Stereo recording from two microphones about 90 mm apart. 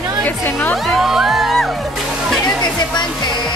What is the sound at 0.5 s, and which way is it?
Speech, 25° left (ahead or behind).